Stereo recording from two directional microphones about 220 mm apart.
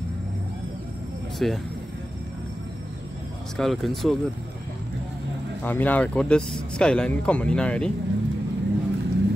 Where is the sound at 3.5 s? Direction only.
Centre (ahead or behind).